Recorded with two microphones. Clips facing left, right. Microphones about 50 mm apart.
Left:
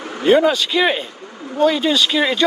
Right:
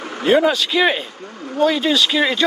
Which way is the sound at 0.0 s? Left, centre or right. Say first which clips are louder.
Left 1 dB; centre.